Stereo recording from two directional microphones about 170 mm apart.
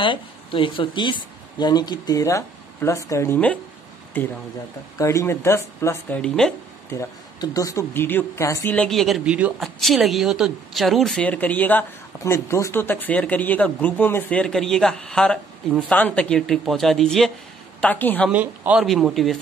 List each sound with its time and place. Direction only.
0.0 s speech: 30° left (ahead or behind); by 3.5 s 10° left (ahead or behind)
4.9 s speech: 15° left (ahead or behind)
7.0 s speech: 20° left (ahead or behind)
18.3 s speech: 10° right (ahead or behind)